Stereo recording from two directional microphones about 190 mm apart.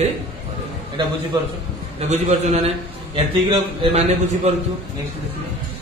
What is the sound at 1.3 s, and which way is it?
Speech, 20° right (ahead or behind).